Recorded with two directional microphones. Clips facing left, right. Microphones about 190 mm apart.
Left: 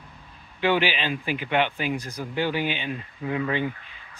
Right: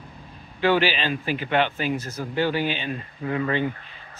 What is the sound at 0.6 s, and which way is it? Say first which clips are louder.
Speech: right 2 dB; 15° left (ahead or behind).